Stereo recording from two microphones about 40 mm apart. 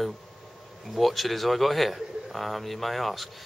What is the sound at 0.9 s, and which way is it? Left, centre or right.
A man's voice, centre.